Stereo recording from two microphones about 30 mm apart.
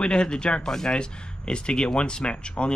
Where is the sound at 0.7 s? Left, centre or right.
Left.